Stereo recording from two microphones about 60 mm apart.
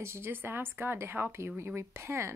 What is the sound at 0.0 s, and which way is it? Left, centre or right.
A woman's voice, right.